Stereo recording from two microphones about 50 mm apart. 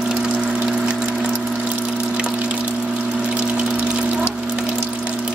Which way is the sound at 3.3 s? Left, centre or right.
Right.